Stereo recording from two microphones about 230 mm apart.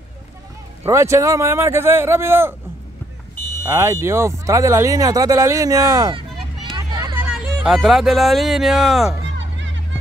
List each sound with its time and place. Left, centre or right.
0.8 s speech: centre
3.6 s speech: centre
9.4 s music: right